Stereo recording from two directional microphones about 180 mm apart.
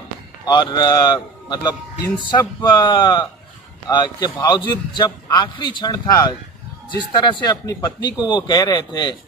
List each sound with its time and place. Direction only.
0.5 s a man's voice: 25° left (ahead or behind)